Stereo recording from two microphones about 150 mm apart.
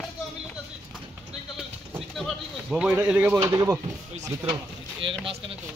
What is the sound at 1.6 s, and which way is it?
Sheep, centre (ahead or behind).